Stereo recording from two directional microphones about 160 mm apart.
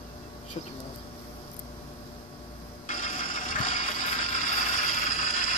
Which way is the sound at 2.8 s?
50° left (ahead or behind).